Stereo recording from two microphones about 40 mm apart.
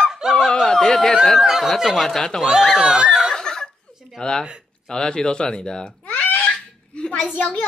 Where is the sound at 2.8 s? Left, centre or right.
Centre.